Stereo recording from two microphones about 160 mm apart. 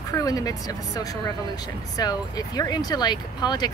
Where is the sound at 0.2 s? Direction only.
20° left (ahead or behind).